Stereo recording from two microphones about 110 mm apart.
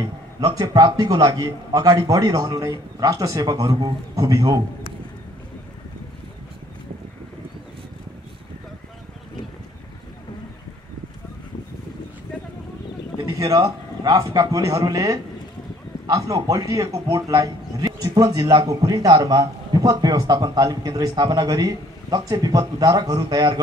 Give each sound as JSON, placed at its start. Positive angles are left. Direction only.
{"t": 0.6, "sound": "a man's voice", "side_deg": -35}
{"t": 13.2, "sound": "a man's voice", "side_deg": -30}